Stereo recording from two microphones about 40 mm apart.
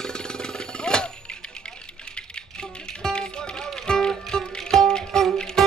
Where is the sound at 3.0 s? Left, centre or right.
Left.